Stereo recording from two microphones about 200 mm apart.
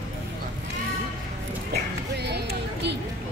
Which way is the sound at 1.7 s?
55° right (ahead or behind).